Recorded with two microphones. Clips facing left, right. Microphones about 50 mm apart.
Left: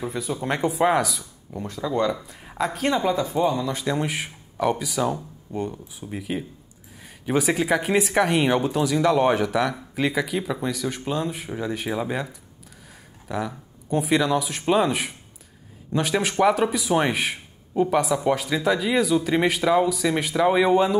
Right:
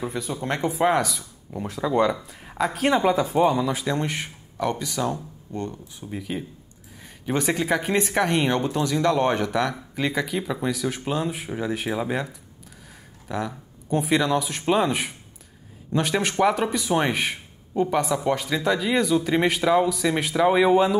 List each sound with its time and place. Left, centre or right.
0.0 s speech: centre
2.1 s speech: centre
2.9 s speech: centre